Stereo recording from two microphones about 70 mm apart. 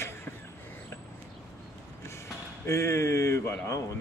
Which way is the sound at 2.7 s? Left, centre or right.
Left.